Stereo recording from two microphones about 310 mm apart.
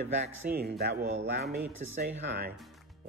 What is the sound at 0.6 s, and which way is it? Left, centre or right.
Speech, right.